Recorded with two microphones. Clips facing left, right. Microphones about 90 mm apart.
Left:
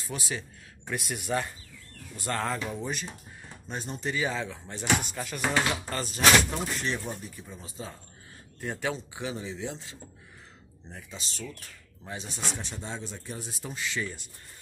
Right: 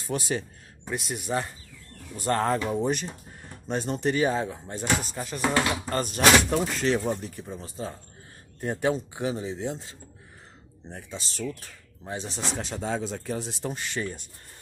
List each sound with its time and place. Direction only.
0.0 s a man's voice: 45° right (ahead or behind)
0.8 s speech: 25° right (ahead or behind)
2.8 s speech: 60° right (ahead or behind); by 5.4 s 30° right (ahead or behind)
5.9 s speech: 50° right (ahead or behind); by 7.4 s 85° right
7.8 s speech: 45° right (ahead or behind)
12.1 s speech: 30° right (ahead or behind)
12.6 s speech: 90° right; by 14.2 s 50° right (ahead or behind)